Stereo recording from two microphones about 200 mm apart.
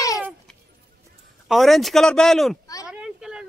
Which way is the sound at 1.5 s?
Centre (ahead or behind).